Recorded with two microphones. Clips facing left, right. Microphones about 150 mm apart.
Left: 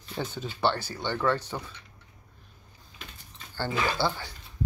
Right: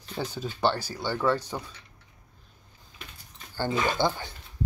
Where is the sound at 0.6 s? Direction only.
10° right (ahead or behind).